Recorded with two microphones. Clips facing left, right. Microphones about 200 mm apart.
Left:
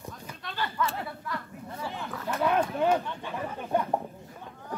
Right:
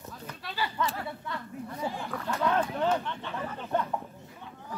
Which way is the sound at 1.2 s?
25° right (ahead or behind).